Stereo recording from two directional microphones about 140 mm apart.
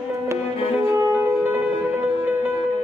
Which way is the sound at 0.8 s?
25° right (ahead or behind).